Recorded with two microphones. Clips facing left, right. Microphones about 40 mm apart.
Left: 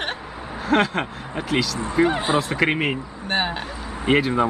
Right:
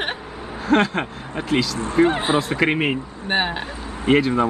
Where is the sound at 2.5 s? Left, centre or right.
Centre.